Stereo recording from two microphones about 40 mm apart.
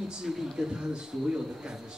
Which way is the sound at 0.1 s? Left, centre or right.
Centre.